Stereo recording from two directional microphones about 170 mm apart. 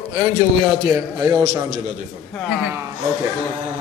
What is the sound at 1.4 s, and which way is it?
Speech, 35° right (ahead or behind).